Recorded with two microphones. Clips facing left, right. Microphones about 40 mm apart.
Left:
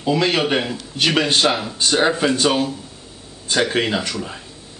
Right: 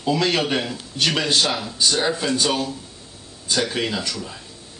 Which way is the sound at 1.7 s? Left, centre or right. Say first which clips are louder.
Left 4 dB; left.